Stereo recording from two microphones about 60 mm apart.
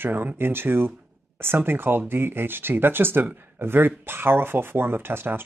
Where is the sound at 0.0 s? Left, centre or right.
Right.